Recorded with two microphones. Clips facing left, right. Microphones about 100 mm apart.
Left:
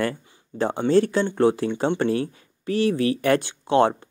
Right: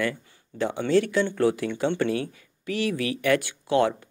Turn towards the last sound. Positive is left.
turn(degrees=30)  # may be behind; listen again after turning